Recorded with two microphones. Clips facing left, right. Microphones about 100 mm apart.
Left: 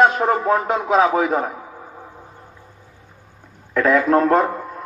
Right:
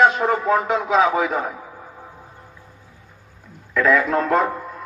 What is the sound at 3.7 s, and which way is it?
Speech, 35° left (ahead or behind).